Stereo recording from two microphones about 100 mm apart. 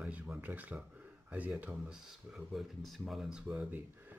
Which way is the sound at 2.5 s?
Centre (ahead or behind).